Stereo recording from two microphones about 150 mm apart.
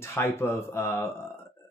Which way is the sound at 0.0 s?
15° left (ahead or behind).